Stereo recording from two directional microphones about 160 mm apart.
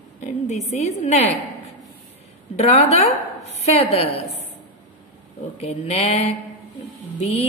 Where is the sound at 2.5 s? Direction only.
40° left (ahead or behind).